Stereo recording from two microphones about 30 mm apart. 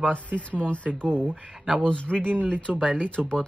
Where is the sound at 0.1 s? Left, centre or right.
Left.